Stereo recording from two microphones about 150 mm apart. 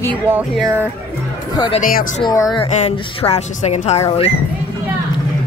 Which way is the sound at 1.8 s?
65° left (ahead or behind).